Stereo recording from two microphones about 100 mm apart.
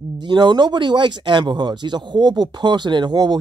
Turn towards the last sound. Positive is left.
turn(degrees=-45)  # may be behind; listen again after turning